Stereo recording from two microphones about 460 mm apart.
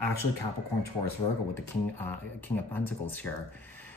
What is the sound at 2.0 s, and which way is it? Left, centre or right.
Speech, centre.